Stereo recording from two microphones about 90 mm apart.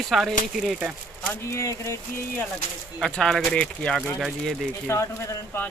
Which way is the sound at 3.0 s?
5° left (ahead or behind).